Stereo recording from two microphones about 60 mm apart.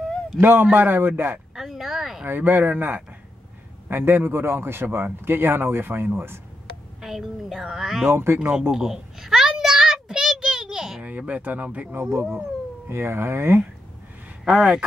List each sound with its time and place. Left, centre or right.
0.4 s speech: right
1.5 s a sound: centre
2.2 s speech: right
7.0 s speech: centre
8.1 s speech: right
8.7 s a sound: centre
11.0 s speech: right
12.8 s speech: right
14.4 s speech: centre